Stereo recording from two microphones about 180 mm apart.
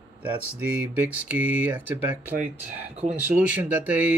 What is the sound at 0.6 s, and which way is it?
Speech, 10° right (ahead or behind).